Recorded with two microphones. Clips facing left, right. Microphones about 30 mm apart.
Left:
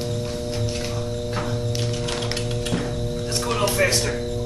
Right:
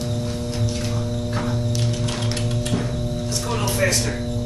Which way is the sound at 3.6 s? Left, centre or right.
Left.